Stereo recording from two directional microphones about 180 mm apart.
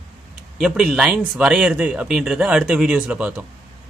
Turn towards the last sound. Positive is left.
turn(degrees=-5)  # may be behind; listen again after turning